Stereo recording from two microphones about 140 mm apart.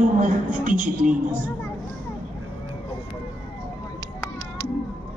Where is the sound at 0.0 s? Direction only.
65° right (ahead or behind).